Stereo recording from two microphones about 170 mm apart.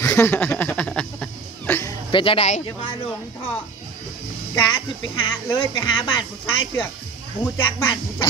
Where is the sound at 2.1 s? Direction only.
30° left (ahead or behind).